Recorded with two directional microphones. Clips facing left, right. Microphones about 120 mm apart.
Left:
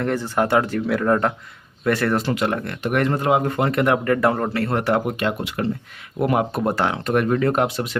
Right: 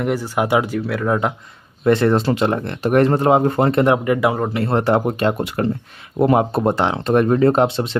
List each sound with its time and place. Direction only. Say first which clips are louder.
0.0 s speech: right 1 dB; 10° right (ahead or behind)
1.9 s speech: right 5 dB; 25° right (ahead or behind)
4.0 s speech: right 1 dB; 10° right (ahead or behind)
4.6 s speech: right 3 dB; 30° right (ahead or behind)